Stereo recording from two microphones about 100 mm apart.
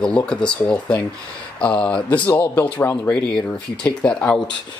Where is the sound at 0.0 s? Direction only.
10° left (ahead or behind).